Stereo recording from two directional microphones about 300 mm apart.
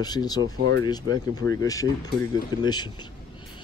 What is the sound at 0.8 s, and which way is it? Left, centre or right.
Speech, centre.